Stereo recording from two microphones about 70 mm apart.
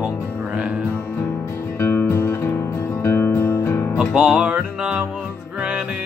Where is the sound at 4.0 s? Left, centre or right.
Centre.